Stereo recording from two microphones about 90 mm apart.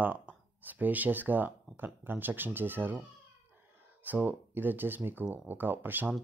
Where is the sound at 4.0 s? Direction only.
20° right (ahead or behind).